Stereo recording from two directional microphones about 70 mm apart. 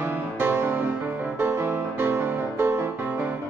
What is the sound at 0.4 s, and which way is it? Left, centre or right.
Music, right.